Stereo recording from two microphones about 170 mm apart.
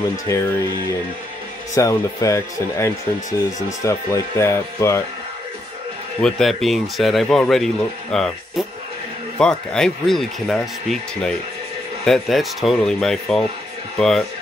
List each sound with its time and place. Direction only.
0.3 s speech: 20° left (ahead or behind)
1.8 s speech: 20° left (ahead or behind)
6.2 s speech: centre (ahead or behind)